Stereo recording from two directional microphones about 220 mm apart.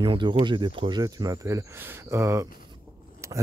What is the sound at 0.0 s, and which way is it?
Speech, 20° right (ahead or behind).